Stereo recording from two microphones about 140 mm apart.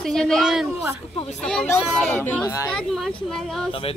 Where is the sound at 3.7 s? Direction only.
40° left (ahead or behind).